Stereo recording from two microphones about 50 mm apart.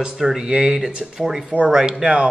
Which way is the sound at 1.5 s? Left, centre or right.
Right.